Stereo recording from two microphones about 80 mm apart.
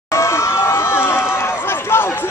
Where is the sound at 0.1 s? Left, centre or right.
Left.